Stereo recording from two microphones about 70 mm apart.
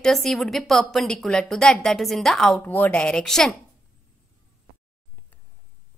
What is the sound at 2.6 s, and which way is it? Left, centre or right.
Speech, left.